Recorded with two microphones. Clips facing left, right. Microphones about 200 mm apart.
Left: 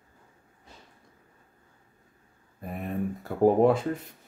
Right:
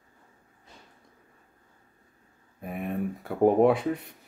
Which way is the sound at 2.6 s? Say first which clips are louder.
Right 1 dB; centre (ahead or behind).